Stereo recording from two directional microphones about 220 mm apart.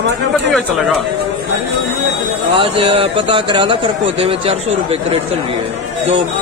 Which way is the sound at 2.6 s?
25° right (ahead or behind).